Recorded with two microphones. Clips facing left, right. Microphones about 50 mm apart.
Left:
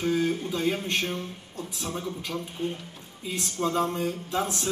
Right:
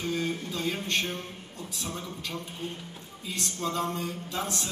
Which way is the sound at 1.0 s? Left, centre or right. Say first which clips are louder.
Left 3 dB; left.